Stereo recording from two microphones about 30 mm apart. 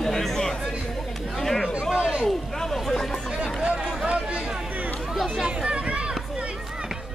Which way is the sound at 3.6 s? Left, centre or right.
Right.